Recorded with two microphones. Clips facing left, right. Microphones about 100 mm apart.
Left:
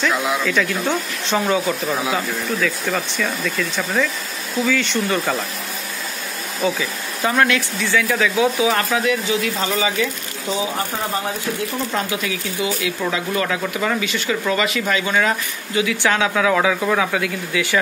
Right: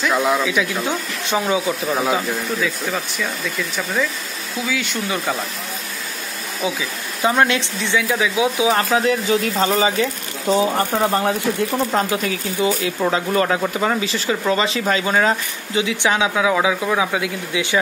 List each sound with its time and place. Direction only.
0.4 s speech: 10° right (ahead or behind)
6.6 s speech: 10° right (ahead or behind)
7.2 s speech: 25° right (ahead or behind)
10.5 s speech: 50° right (ahead or behind)
11.9 s speech: 35° right (ahead or behind); by 17.7 s 20° right (ahead or behind)